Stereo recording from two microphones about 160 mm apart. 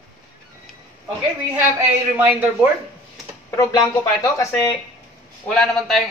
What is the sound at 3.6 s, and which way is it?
Speech, 25° left (ahead or behind).